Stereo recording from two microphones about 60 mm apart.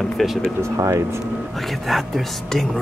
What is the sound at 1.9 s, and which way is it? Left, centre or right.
Speech, centre.